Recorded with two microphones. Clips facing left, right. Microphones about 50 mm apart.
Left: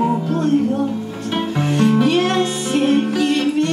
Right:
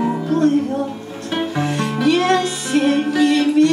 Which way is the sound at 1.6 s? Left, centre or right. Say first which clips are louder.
Left 5 dB; left.